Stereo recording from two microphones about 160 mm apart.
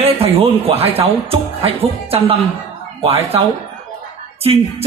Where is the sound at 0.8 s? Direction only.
35° right (ahead or behind).